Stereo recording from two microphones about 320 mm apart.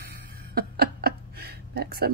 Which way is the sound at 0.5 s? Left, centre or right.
Right.